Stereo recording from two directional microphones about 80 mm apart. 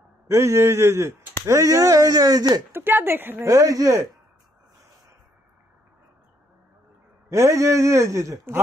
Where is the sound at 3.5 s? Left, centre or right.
Right.